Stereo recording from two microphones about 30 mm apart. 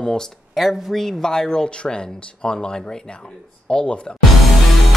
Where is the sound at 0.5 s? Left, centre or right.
Centre.